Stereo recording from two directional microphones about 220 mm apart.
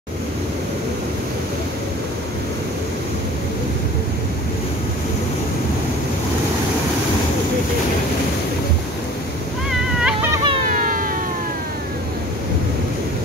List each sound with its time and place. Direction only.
9.7 s cat: 5° right (ahead or behind)
10.6 s vehicle: 35° right (ahead or behind)